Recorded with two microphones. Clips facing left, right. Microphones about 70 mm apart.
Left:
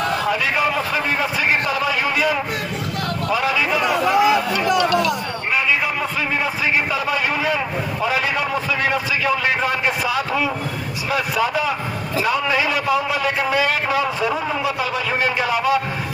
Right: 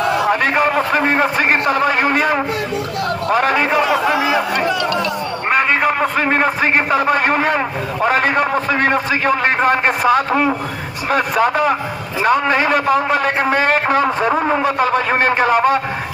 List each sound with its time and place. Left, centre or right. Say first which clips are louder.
0.3 s a man's voice: right 5 dB; right
5.5 s a man's voice: right 6 dB; right